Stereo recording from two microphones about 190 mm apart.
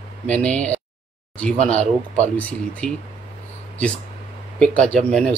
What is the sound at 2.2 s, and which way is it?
Speech, 10° left (ahead or behind).